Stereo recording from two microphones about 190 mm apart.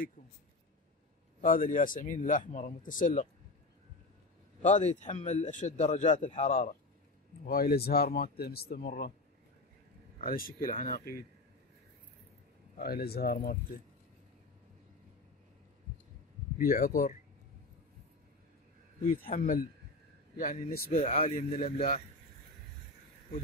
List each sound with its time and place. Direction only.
1.4 s speech: 45° left (ahead or behind)
4.6 s a man's voice: 40° left (ahead or behind); by 9.1 s 55° left (ahead or behind)
10.2 s speech: 50° left (ahead or behind)
12.7 s speech: 55° left (ahead or behind)
16.5 s speech: 50° left (ahead or behind)
19.0 s speech: 50° left (ahead or behind)
21.0 s a man's voice: 30° left (ahead or behind)